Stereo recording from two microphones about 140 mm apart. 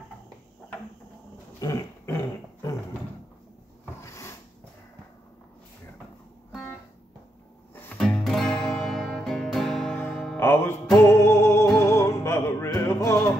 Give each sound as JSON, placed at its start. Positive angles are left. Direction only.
{"t": 1.6, "sound": "dog", "side_deg": 25}
{"t": 4.0, "sound": "a sound", "side_deg": 20}
{"t": 8.0, "sound": "music", "side_deg": 5}